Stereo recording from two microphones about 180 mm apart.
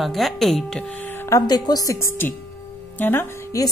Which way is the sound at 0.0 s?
Centre (ahead or behind).